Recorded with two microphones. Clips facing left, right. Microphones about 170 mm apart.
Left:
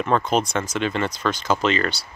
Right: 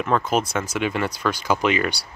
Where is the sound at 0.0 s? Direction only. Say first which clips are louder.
Left 1 dB; 5° right (ahead or behind).